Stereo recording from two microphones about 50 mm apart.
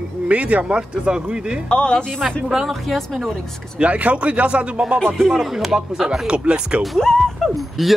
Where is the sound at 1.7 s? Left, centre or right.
Left.